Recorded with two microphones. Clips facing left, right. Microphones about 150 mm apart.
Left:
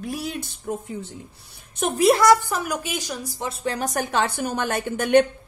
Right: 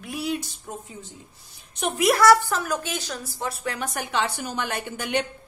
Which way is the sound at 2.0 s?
25° left (ahead or behind).